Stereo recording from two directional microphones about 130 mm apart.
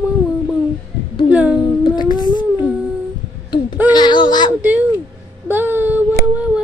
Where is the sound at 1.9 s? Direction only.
35° left (ahead or behind).